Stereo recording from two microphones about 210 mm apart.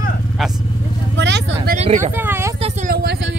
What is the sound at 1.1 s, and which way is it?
Vehicle, 55° right (ahead or behind).